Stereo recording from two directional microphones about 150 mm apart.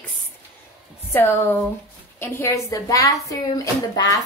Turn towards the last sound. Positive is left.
turn(degrees=25)  # may be behind; listen again after turning